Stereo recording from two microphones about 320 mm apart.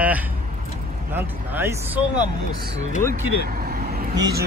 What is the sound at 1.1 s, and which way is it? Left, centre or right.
Speech, centre.